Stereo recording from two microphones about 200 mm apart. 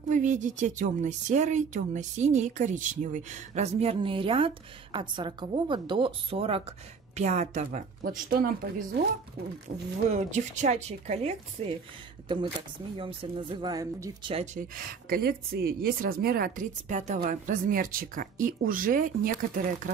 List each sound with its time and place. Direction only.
0.1 s a woman's voice: 40° right (ahead or behind)
10.0 s a woman's voice: 35° right (ahead or behind)
12.9 s a woman's voice: 25° right (ahead or behind)
14.3 s a woman's voice: 35° right (ahead or behind)